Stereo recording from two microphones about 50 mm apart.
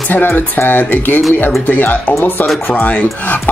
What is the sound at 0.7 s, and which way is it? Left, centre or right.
Speech, left.